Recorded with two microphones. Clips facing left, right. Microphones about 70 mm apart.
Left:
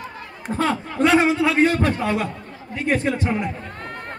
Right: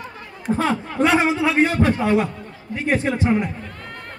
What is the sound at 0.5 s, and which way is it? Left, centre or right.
A man's voice, centre.